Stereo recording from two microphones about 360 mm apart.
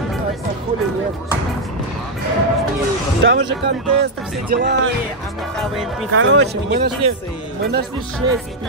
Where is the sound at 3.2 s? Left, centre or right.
Right.